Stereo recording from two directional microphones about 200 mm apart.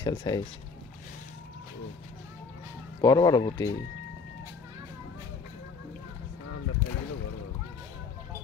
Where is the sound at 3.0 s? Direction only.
20° left (ahead or behind).